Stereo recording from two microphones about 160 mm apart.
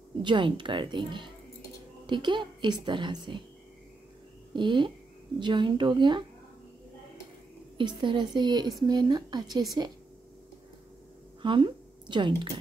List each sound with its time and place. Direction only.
0.2 s a woman's voice: 30° right (ahead or behind)
4.6 s a woman's voice: 30° right (ahead or behind)
7.7 s a woman's voice: 30° right (ahead or behind)
11.4 s speech: 30° right (ahead or behind)